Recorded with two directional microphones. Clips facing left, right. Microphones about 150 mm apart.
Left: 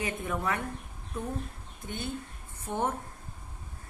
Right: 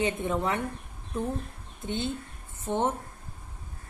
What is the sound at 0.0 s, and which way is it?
Speech, 25° right (ahead or behind).